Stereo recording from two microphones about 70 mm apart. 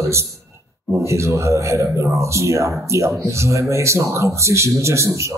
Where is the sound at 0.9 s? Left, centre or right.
Right.